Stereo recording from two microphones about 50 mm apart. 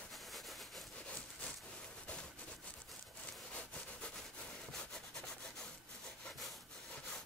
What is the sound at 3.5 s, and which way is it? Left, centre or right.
Sawing, left.